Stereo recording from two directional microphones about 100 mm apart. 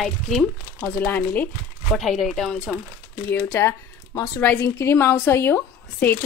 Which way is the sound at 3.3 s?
25° left (ahead or behind).